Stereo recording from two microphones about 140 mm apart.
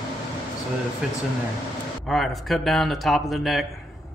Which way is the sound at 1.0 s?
5° right (ahead or behind).